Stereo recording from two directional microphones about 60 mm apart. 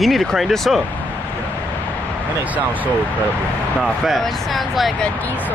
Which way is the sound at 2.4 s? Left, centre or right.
Right.